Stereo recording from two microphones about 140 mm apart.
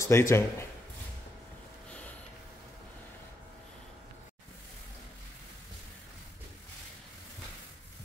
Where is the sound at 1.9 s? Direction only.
10° left (ahead or behind).